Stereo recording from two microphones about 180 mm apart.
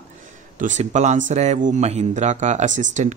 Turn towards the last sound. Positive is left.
turn(degrees=-45)  # may be behind; listen again after turning